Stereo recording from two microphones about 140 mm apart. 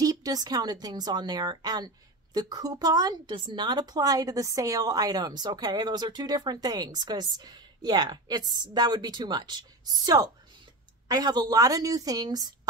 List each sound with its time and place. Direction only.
0.0 s a woman's voice: 25° right (ahead or behind)